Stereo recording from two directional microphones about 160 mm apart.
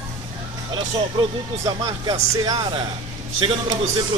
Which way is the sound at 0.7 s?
30° right (ahead or behind).